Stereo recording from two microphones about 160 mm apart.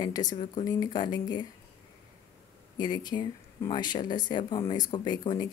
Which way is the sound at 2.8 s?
25° left (ahead or behind).